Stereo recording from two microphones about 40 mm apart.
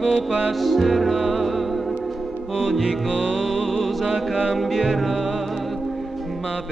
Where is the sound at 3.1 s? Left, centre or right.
Right.